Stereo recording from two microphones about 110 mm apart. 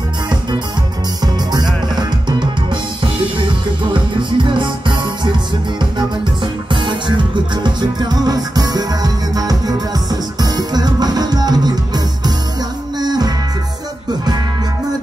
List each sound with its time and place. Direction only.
1.2 s music: 40° right (ahead or behind)
2.0 s drum kit: 45° right (ahead or behind)
7.6 s music: 40° right (ahead or behind)
13.0 s music: 40° right (ahead or behind)